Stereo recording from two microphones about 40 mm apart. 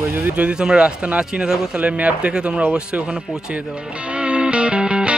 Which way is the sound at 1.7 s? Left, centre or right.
Right.